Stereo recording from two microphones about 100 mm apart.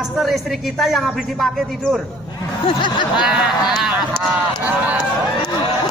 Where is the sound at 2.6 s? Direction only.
55° left (ahead or behind).